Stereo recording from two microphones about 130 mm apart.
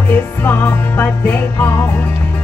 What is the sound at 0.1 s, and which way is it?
Music, 15° left (ahead or behind).